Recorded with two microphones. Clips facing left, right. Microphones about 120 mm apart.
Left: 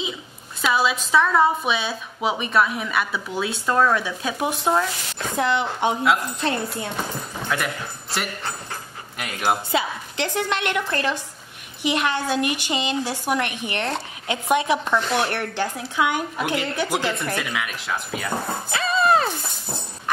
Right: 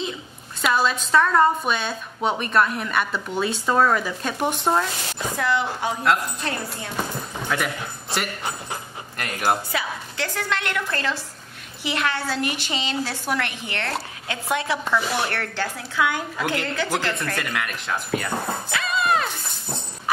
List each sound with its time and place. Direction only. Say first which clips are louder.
0.6 s a woman's voice: even; 5° left (ahead or behind)
5.3 s a woman's voice: left 2 dB; 20° left (ahead or behind)
7.4 s speech: even; centre (ahead or behind)
9.7 s a woman's voice: left 4 dB; 20° left (ahead or behind)
15.0 s a woman's voice: left 2 dB; 5° right (ahead or behind)
15.2 s a woman's voice: left 2 dB; 15° left (ahead or behind)
17.4 s a woman's voice: even; 5° left (ahead or behind)
18.7 s music: left 4 dB; 35° left (ahead or behind)